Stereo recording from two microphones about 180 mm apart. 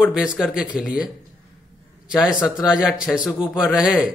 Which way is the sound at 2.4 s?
5° right (ahead or behind).